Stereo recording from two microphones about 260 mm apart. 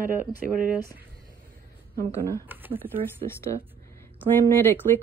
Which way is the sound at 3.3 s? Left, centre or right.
Centre.